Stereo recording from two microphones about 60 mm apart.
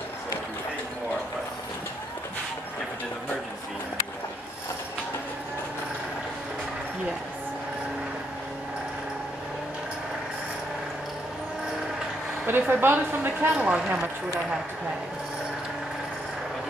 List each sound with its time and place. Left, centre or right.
12.4 s a woman's voice: right
13.6 s speech: centre